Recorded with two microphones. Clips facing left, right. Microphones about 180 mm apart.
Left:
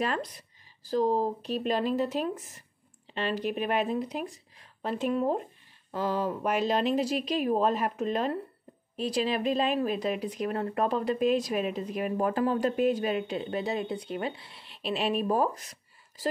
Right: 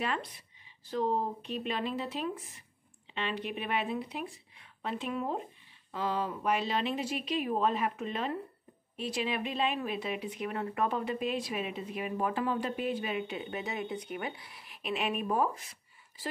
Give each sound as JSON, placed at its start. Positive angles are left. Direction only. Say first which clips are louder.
{"t": 0.0, "sound": "a woman's voice", "louder": "left 4 dB", "side_deg": 40}